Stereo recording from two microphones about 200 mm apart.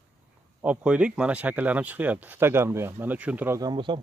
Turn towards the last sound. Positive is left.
turn(degrees=-20)  # may be behind; listen again after turning